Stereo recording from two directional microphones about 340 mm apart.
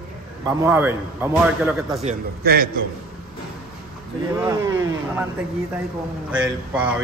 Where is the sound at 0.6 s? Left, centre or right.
Centre.